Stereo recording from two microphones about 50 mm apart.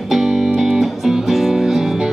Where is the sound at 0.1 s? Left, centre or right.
Centre.